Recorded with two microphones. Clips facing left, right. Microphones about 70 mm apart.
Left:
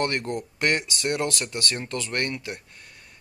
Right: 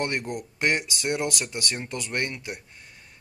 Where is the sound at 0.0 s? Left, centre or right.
Centre.